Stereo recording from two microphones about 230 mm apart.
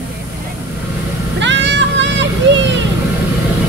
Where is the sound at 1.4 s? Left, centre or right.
Right.